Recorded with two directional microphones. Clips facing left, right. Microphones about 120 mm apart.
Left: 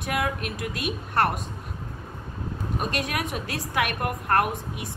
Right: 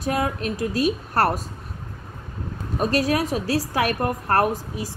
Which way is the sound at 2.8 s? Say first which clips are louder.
Right 9 dB; 35° right (ahead or behind).